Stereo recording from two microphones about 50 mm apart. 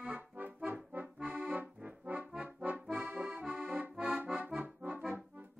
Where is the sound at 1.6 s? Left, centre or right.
Right.